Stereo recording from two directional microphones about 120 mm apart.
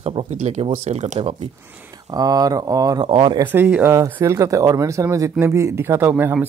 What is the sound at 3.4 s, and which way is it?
Speech, 15° right (ahead or behind).